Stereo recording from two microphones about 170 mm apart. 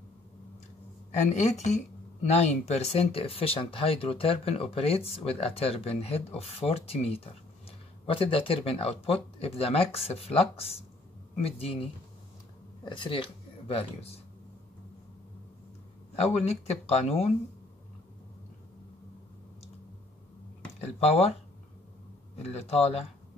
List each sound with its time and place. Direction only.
1.2 s speech: 40° left (ahead or behind)
16.2 s speech: 40° left (ahead or behind)
21.0 s speech: 35° left (ahead or behind)
22.4 s speech: 40° left (ahead or behind)